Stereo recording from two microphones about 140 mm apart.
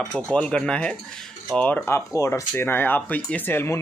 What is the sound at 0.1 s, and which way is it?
Speech, 10° left (ahead or behind).